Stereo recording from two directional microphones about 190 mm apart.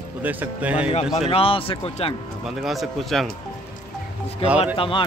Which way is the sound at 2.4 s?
Centre (ahead or behind).